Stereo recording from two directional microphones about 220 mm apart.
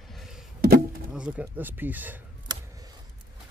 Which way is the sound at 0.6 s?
45° right (ahead or behind).